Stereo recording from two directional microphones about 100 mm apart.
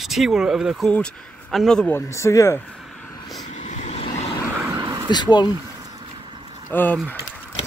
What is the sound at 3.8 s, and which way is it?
Vehicle, 90° left.